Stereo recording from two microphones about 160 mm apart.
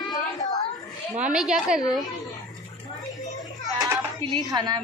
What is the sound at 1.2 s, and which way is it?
Speech, 5° right (ahead or behind).